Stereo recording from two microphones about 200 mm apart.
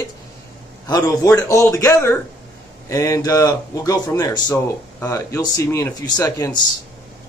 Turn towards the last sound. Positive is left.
turn(degrees=20)  # may be behind; listen again after turning